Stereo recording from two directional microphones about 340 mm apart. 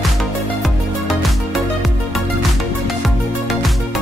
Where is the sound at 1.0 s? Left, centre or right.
Centre.